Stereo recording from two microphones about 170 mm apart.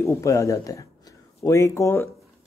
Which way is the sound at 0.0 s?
15° left (ahead or behind).